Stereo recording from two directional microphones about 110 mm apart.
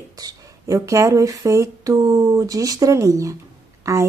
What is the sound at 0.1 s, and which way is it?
Speech, 35° right (ahead or behind).